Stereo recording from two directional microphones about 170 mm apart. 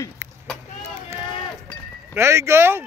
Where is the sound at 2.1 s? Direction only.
15° right (ahead or behind).